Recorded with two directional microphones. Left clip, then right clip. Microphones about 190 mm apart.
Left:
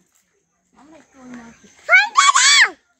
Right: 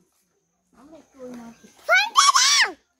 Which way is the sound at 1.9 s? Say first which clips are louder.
Left 4 dB; 10° right (ahead or behind).